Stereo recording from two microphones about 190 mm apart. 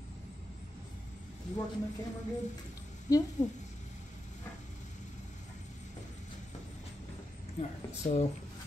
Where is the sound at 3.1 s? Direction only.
20° left (ahead or behind).